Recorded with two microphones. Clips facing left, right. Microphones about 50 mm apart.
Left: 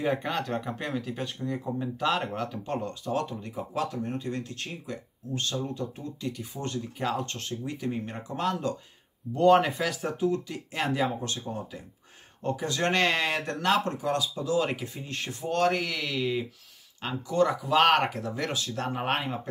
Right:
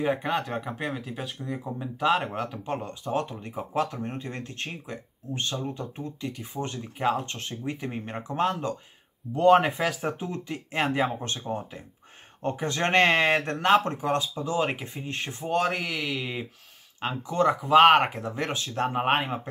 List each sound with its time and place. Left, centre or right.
0.0 s speech: centre
2.9 s speech: right
10.1 s speech: right; by 16.3 s centre
17.0 s speech: right